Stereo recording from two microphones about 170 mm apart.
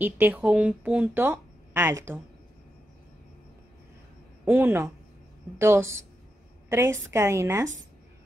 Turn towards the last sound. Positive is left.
turn(degrees=-15)  # may be behind; listen again after turning